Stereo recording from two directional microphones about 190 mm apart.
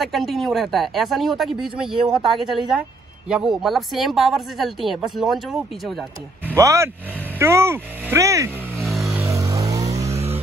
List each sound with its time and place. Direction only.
0.0 s speech: centre (ahead or behind)
6.5 s speech: 15° right (ahead or behind)
8.8 s a sound: centre (ahead or behind)
9.2 s vehicle: 15° right (ahead or behind)